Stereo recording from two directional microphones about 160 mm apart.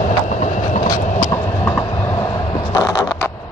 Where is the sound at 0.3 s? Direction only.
50° left (ahead or behind).